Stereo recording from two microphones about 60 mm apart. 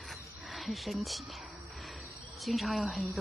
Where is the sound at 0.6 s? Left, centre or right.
Centre.